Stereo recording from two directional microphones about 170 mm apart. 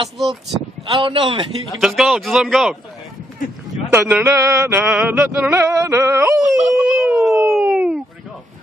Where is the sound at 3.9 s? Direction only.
15° right (ahead or behind).